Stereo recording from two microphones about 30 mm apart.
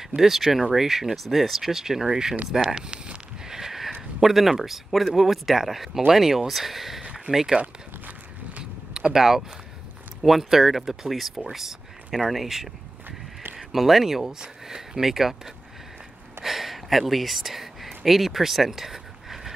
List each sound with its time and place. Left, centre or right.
0.0 s speech: centre
3.4 s sniff: centre
4.2 s speech: centre
7.3 s speech: right
8.9 s a sound: right
10.2 s speech: centre
16.4 s a sound: centre
17.1 s speech: centre